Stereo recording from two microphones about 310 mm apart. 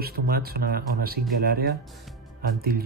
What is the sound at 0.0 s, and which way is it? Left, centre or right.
Speech, right.